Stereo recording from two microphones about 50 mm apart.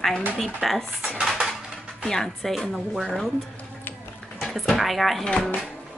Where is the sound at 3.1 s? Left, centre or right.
Centre.